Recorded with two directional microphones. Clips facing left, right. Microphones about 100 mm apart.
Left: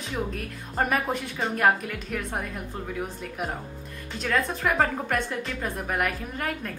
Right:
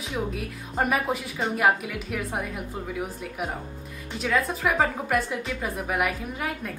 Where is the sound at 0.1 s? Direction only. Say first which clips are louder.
Right 1 dB; 5° right (ahead or behind).